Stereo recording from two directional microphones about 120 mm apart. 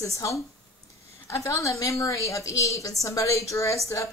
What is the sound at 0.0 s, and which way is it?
A woman's voice, 25° left (ahead or behind).